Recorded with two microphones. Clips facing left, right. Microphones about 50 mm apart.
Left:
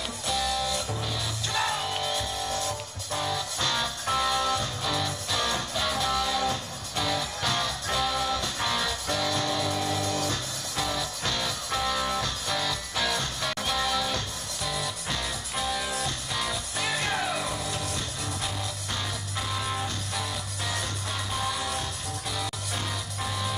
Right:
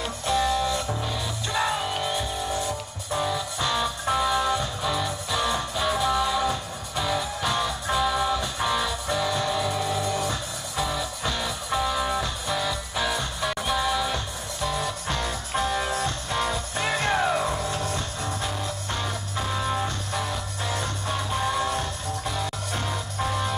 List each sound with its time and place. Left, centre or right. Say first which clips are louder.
0.3 s music: right 5 dB; right